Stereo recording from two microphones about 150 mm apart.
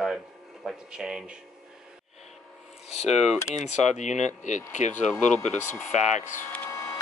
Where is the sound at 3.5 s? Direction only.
50° left (ahead or behind).